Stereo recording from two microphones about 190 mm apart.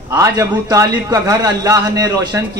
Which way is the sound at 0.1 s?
15° right (ahead or behind).